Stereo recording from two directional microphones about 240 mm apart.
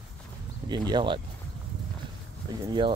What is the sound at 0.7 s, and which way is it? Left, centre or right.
Speech, centre.